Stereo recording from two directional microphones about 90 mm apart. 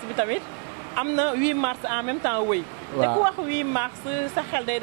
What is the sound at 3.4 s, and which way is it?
Speech, 15° right (ahead or behind).